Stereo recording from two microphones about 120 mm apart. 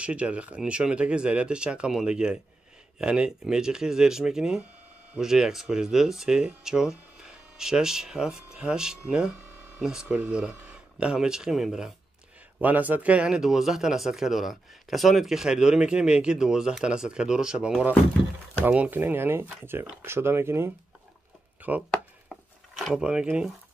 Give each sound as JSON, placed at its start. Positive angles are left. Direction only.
{"t": 0.0, "sound": "speech", "side_deg": -10}
{"t": 12.5, "sound": "speech", "side_deg": -15}
{"t": 21.5, "sound": "chopping", "side_deg": -15}
{"t": 21.9, "sound": "chopping", "side_deg": 5}